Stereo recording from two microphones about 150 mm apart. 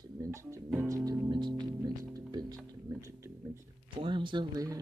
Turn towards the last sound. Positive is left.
turn(degrees=-25)  # may be behind; listen again after turning